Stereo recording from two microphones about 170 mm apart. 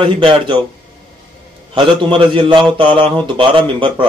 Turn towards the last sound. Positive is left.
turn(degrees=-30)  # may be behind; listen again after turning